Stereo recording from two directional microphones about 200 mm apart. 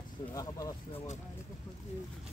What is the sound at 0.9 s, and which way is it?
Speech, 35° left (ahead or behind).